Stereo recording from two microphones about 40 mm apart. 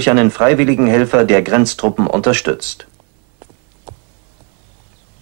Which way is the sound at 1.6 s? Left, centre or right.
Right.